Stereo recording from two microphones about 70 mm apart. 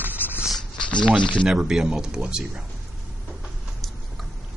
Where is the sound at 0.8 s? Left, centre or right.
Centre.